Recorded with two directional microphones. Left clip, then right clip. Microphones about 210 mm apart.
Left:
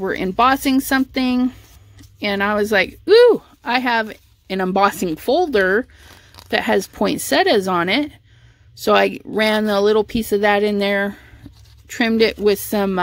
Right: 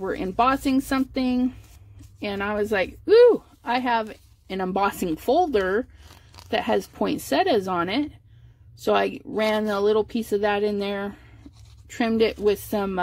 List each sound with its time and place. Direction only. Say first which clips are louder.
0.0 s a woman's voice: left 6 dB; 35° left (ahead or behind)